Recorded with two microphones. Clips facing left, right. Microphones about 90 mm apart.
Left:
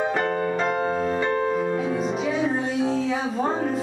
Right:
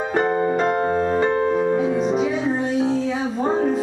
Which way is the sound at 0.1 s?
20° right (ahead or behind).